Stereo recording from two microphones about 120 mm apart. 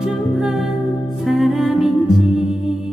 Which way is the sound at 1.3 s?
Centre (ahead or behind).